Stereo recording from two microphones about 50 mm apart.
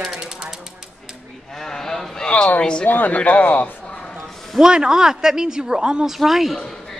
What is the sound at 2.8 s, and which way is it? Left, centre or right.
Speech, left.